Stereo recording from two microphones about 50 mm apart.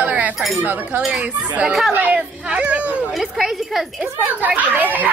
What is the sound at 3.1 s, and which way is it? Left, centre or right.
Speech, centre.